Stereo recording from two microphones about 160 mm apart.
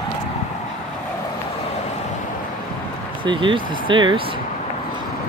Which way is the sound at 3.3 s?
30° right (ahead or behind).